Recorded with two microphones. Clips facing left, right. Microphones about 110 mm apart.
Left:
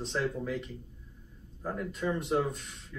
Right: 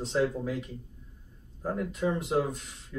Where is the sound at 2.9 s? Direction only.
15° right (ahead or behind).